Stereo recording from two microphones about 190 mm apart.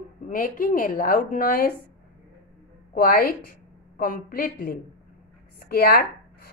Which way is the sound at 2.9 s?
50° left (ahead or behind).